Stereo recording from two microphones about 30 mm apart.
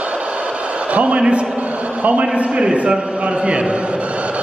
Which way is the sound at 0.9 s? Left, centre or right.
Right.